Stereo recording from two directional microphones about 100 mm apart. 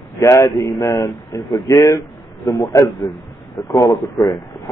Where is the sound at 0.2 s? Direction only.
30° left (ahead or behind).